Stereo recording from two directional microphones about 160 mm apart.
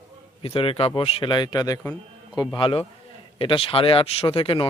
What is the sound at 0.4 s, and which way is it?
Speech, 35° left (ahead or behind).